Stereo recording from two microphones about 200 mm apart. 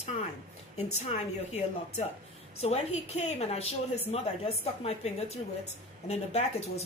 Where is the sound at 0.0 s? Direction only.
35° left (ahead or behind).